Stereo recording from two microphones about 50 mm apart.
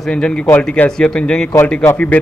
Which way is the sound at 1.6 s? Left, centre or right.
Left.